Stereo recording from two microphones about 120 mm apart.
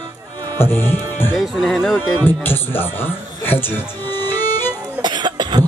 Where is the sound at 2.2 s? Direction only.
20° left (ahead or behind).